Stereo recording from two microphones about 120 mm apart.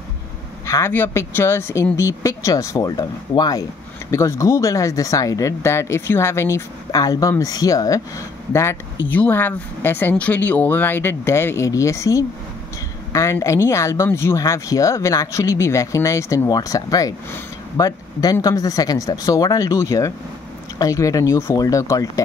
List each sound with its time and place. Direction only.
0.7 s speech: 20° left (ahead or behind)